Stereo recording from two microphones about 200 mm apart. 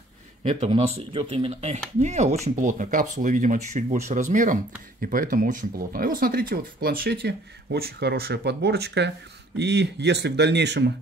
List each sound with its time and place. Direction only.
0.4 s speech: 35° right (ahead or behind); by 10.9 s 60° right (ahead or behind)